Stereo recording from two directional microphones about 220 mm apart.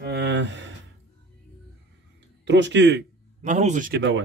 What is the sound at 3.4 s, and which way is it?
Speech, 30° right (ahead or behind).